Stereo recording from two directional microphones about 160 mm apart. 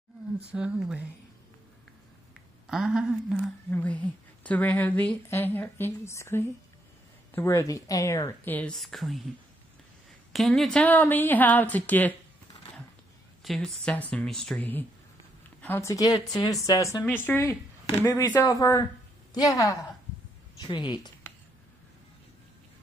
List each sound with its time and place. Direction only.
0.5 s speech: 5° right (ahead or behind)
2.6 s speech: 5° right (ahead or behind)
3.7 s a woman's voice: 10° left (ahead or behind)
10.3 s a woman's voice: centre (ahead or behind)
13.4 s a woman's voice: 5° left (ahead or behind); by 21.1 s 30° left (ahead or behind)